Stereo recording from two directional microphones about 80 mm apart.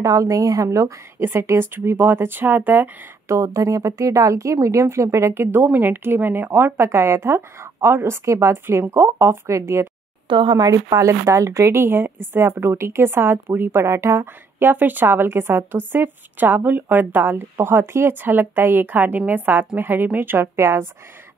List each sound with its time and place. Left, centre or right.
0.0 s speech: right
3.3 s speech: right
10.2 s speech: right
20.5 s speech: right